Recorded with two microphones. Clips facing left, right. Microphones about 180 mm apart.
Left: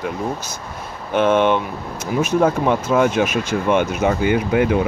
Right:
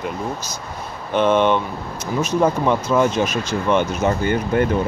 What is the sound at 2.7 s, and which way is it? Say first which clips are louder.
Speech: left 1 dB; 10° left (ahead or behind).